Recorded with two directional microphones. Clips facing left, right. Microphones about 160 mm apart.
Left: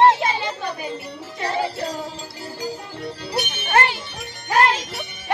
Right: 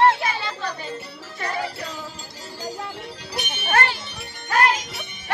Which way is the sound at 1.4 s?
30° left (ahead or behind).